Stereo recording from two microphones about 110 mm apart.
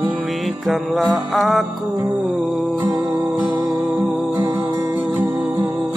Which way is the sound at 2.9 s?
35° right (ahead or behind).